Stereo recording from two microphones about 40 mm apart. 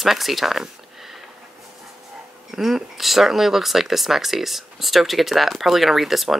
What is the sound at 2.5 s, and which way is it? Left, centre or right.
Speech, centre.